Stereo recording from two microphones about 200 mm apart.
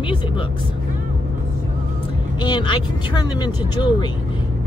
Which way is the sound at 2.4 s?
25° left (ahead or behind).